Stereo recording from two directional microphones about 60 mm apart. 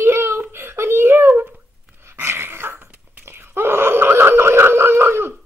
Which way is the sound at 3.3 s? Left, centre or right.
Right.